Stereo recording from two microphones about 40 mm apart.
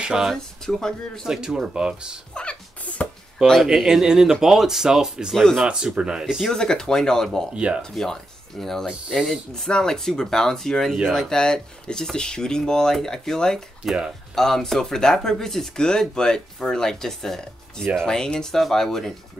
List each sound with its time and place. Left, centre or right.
0.1 s speech: centre
0.6 s speech: centre
1.2 s speech: centre
2.4 s a sound: left
3.0 s chop: left
3.4 s speech: centre
6.5 s speech: centre
7.5 s speech: right
7.9 s speech: centre
11.3 s speech: centre